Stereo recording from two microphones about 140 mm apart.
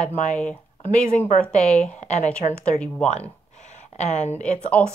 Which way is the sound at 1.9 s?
55° left (ahead or behind).